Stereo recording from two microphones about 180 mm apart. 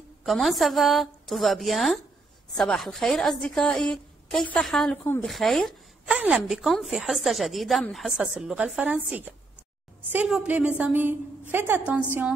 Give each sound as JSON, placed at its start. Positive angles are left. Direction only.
{"t": 0.2, "sound": "a woman's voice", "side_deg": 0}